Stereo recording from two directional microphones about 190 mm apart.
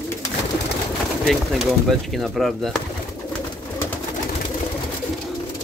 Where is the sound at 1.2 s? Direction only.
Centre (ahead or behind).